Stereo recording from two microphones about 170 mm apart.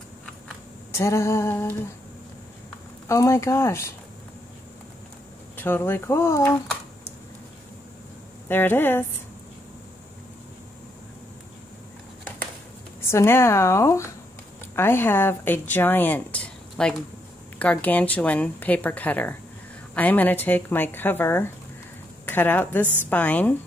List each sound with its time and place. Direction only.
0.9 s speech: 15° left (ahead or behind)
3.1 s speech: 15° left (ahead or behind)
5.6 s speech: 15° left (ahead or behind)
8.5 s speech: 10° left (ahead or behind)
13.0 s a woman's voice: 15° left (ahead or behind)